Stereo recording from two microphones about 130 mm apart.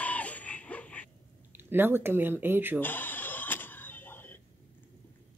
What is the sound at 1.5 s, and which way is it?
Speech, 15° right (ahead or behind).